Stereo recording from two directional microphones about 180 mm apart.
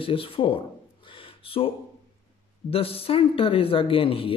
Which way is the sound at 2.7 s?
30° left (ahead or behind).